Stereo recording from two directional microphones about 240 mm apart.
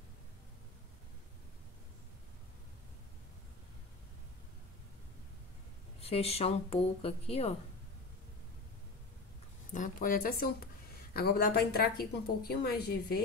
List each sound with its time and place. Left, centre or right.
5.9 s speech: left
9.8 s speech: left